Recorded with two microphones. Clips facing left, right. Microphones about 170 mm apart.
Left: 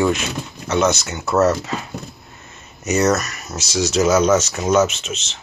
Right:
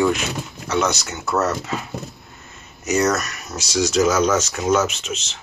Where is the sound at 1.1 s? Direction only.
Centre (ahead or behind).